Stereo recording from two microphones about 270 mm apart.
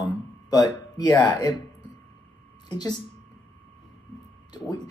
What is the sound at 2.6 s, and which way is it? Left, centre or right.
Speech, centre.